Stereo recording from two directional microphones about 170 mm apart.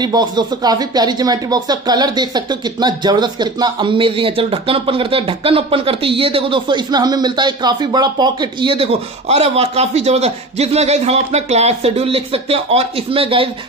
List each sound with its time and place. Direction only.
0.0 s speech: 25° right (ahead or behind)